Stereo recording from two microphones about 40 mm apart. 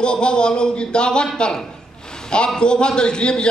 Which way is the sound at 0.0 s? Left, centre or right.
Left.